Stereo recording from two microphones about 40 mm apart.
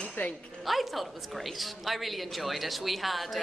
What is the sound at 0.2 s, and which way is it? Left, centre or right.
Speech, left.